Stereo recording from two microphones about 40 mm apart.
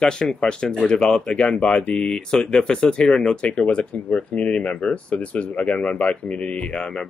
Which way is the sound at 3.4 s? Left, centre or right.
Left.